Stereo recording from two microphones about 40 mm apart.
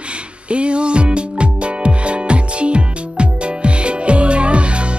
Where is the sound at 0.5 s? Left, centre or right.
Right.